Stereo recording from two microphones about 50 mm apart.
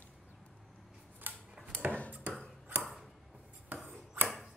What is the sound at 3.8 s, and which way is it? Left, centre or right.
Ping, right.